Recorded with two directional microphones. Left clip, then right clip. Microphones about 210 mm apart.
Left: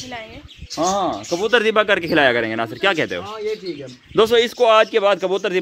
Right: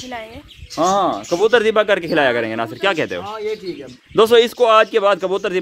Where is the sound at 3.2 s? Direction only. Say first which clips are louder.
Right 1 dB; 15° right (ahead or behind).